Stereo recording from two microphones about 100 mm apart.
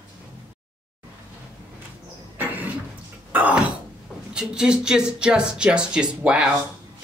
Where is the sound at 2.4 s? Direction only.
15° right (ahead or behind).